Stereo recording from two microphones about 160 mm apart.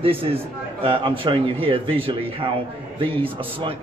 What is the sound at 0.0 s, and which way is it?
A man's voice, 35° right (ahead or behind).